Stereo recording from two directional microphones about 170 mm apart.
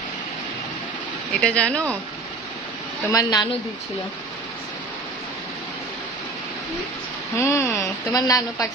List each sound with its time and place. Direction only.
1.4 s a woman's voice: 5° left (ahead or behind)
3.1 s a woman's voice: 20° left (ahead or behind)
7.3 s a woman's voice: 15° left (ahead or behind)